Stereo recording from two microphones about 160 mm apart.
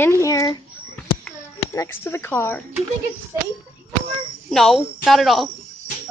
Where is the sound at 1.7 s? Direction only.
15° left (ahead or behind).